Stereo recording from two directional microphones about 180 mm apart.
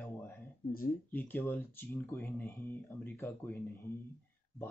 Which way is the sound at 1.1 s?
10° left (ahead or behind).